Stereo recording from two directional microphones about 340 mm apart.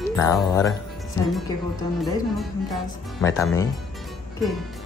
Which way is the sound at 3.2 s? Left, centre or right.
Centre.